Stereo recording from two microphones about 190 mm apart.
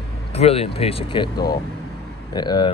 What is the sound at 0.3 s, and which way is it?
Speech, 30° left (ahead or behind).